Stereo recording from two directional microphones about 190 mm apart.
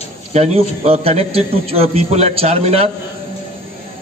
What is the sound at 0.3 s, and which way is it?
A man's voice, 35° right (ahead or behind).